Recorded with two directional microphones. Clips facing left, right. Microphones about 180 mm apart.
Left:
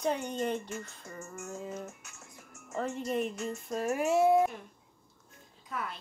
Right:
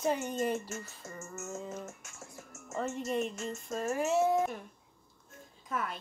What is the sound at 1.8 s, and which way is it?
Music, 45° right (ahead or behind).